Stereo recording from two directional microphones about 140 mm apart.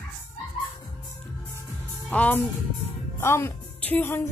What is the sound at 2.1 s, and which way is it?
A woman's voice, 10° left (ahead or behind).